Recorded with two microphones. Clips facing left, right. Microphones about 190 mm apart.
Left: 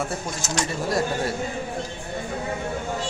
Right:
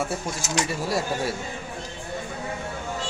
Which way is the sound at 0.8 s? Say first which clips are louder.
Left 2 dB; 5° right (ahead or behind).